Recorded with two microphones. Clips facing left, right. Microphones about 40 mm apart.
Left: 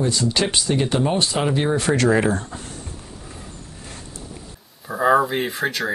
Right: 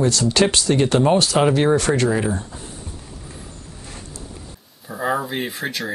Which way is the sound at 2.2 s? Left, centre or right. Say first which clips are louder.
Left 2 dB; left.